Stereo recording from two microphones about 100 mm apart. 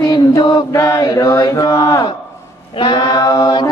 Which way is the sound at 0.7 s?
35° left (ahead or behind).